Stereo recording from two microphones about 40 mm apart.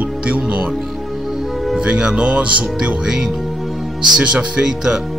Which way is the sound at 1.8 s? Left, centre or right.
Right.